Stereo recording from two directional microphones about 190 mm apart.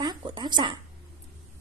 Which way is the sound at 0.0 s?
25° right (ahead or behind).